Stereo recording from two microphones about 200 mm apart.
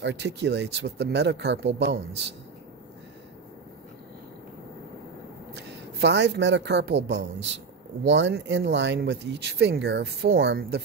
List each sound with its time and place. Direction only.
0.0 s speech: 60° right (ahead or behind)
5.5 s speech: 60° right (ahead or behind)